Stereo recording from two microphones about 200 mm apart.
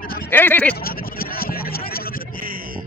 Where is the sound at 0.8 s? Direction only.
50° left (ahead or behind).